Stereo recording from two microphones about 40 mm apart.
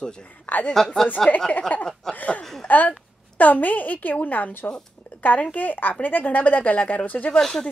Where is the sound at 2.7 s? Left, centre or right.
Left.